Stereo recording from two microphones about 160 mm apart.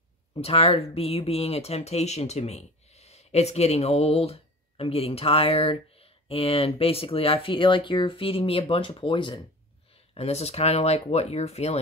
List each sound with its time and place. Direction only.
0.3 s speech: 35° left (ahead or behind)
10.1 s speech: 40° left (ahead or behind)